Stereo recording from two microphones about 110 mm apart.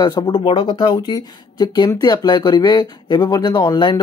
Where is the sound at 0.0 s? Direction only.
40° left (ahead or behind).